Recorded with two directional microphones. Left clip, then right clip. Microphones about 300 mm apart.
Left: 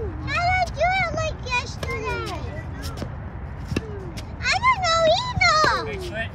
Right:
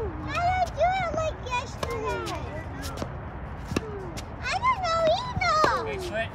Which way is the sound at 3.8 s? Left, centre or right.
Centre.